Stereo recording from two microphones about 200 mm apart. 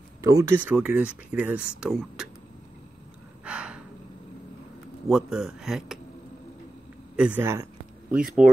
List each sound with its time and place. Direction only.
0.2 s speech: 15° right (ahead or behind)
3.4 s gasp: 5° right (ahead or behind)
5.0 s speech: centre (ahead or behind)
7.2 s speech: 10° right (ahead or behind)